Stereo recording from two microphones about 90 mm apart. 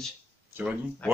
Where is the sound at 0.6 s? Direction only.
20° right (ahead or behind).